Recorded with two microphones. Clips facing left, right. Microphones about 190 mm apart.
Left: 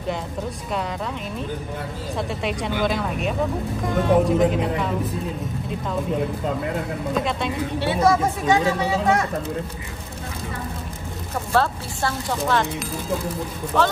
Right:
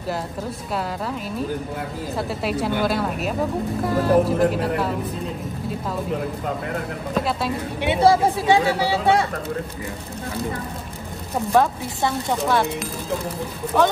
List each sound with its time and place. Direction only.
2.1 s speech: 5° right (ahead or behind)
7.2 s speech: 5° right (ahead or behind)
8.0 s speech: 30° right (ahead or behind)
11.5 s speech: 15° right (ahead or behind)
13.7 s speech: 10° right (ahead or behind)